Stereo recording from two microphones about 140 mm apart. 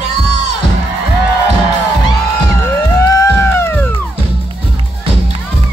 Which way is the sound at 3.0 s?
15° left (ahead or behind).